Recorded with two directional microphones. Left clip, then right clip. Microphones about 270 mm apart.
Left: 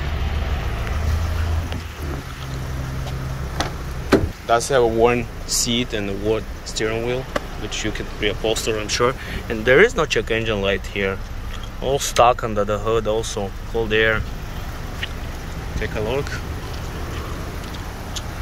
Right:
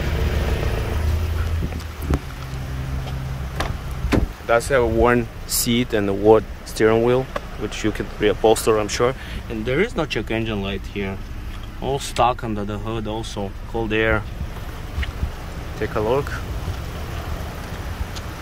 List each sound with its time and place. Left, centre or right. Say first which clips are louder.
4.5 s speech: left 1 dB; centre
5.7 s speech: right 2 dB; centre
15.8 s speech: right 3 dB; centre